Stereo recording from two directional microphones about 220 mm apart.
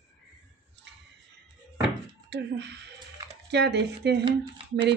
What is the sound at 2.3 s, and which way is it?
Speech, 50° right (ahead or behind).